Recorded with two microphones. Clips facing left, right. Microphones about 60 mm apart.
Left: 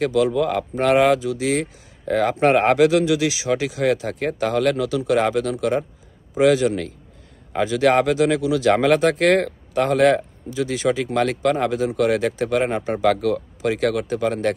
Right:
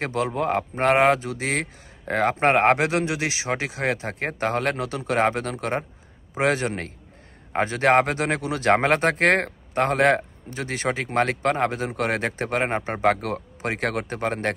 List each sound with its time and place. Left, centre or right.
0.0 s speech: right